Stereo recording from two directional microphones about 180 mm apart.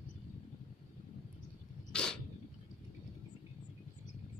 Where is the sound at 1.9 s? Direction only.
5° left (ahead or behind).